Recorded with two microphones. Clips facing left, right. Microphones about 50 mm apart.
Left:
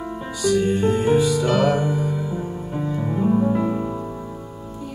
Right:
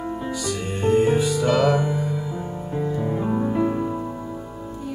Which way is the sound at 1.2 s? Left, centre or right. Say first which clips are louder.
Left 1 dB; left.